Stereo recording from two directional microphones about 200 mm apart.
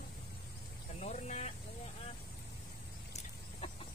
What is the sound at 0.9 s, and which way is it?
Vehicle, 35° left (ahead or behind).